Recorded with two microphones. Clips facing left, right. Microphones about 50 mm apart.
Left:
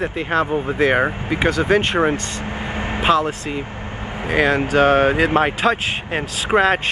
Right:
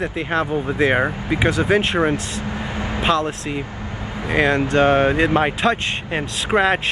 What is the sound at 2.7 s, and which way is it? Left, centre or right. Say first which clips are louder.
Vehicle: left 3 dB; left.